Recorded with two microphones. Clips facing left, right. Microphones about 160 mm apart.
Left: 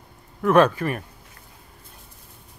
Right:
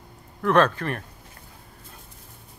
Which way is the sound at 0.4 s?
10° left (ahead or behind).